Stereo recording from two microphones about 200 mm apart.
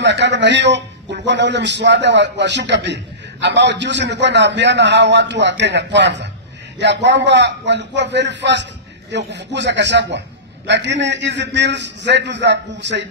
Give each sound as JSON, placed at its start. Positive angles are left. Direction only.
{"t": 0.0, "sound": "a man's voice", "side_deg": -60}